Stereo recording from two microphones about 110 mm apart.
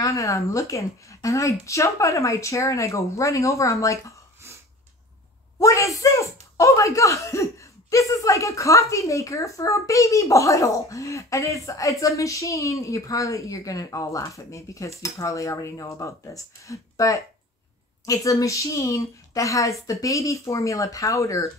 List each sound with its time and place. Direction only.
0.0 s speech: 30° left (ahead or behind)
5.6 s speech: 30° left (ahead or behind)